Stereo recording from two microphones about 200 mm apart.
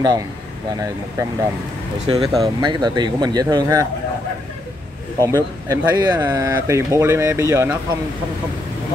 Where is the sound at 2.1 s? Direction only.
25° right (ahead or behind).